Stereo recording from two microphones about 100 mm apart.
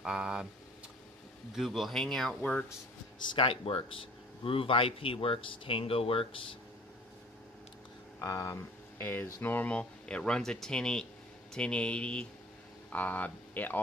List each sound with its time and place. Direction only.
0.0 s speech: 5° right (ahead or behind)
1.5 s speech: centre (ahead or behind)
3.3 s speech: 65° left (ahead or behind)
8.2 s speech: 35° left (ahead or behind); by 13.7 s 15° left (ahead or behind)